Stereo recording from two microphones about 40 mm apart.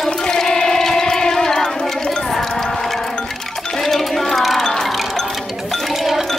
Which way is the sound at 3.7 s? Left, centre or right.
Centre.